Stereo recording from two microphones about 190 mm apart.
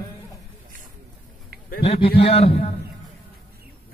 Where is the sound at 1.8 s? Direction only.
30° left (ahead or behind).